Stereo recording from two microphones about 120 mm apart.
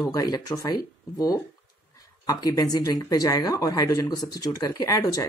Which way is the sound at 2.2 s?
30° left (ahead or behind).